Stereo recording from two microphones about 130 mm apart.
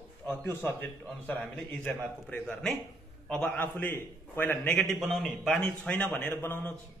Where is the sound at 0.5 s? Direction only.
15° left (ahead or behind).